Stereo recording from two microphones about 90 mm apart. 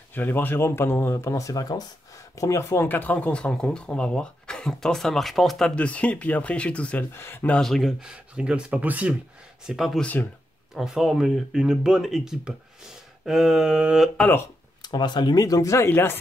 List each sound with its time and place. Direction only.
0.1 s speech: 20° left (ahead or behind); by 5.7 s centre (ahead or behind)
5.8 s speech: 15° left (ahead or behind)
7.2 s speech: 25° left (ahead or behind)
7.4 s speech: 10° left (ahead or behind)
8.0 s speech: 10° right (ahead or behind)
9.7 s speech: centre (ahead or behind)
14.8 s speech: 55° left (ahead or behind); by 15.9 s 35° left (ahead or behind)
15.9 s speech: 25° left (ahead or behind)